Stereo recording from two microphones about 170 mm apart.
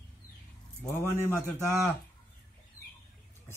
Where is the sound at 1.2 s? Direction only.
15° left (ahead or behind).